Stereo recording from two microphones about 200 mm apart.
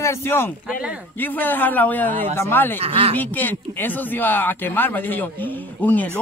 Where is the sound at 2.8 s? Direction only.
30° right (ahead or behind).